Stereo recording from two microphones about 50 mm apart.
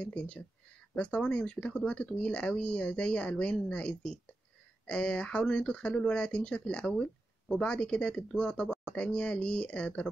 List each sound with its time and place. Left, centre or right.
0.0 s speech: left